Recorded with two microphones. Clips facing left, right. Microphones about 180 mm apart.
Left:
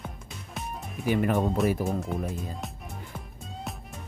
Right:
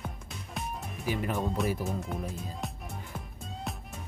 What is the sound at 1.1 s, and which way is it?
Speech, 55° left (ahead or behind).